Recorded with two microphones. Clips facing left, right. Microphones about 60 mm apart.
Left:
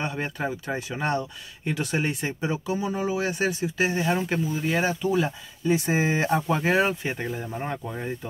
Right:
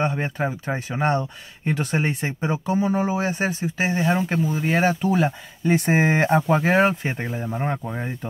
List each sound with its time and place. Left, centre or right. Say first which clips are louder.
0.0 s speech: right 5 dB; right
6.4 s speech: right 4 dB; right